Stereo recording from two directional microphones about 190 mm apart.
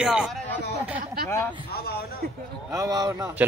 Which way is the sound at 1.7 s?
55° left (ahead or behind).